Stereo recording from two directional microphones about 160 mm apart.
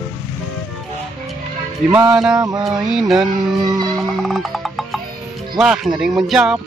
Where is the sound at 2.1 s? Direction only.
5° right (ahead or behind).